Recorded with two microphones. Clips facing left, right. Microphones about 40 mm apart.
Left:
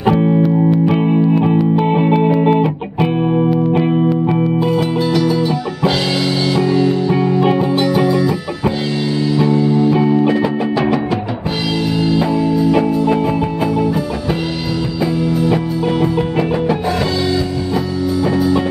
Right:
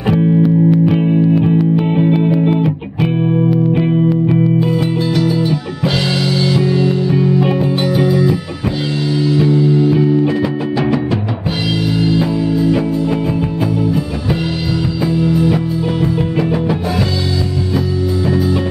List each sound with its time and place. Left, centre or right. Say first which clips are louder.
0.4 s music: right 1 dB; centre
1.9 s music: even; centre
2.5 s music: left 1 dB; centre
3.4 s music: even; centre
4.7 s music: left 1 dB; centre
7.1 s music: even; centre
9.4 s music: even; centre
9.9 s music: even; centre
12.2 s music: left 1 dB; centre
12.7 s music: left 2 dB; centre
15.1 s music: right 2 dB; centre
18.2 s music: left 2 dB; centre